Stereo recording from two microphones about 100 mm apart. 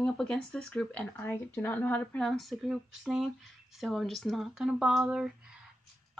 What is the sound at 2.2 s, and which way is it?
A woman's voice, centre (ahead or behind).